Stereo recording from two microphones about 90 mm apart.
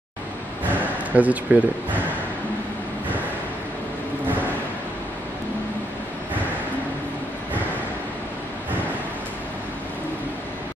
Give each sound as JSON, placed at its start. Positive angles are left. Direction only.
{"t": 1.1, "sound": "speech", "side_deg": -15}